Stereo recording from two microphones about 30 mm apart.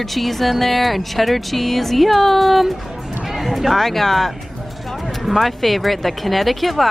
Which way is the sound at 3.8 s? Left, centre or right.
Centre.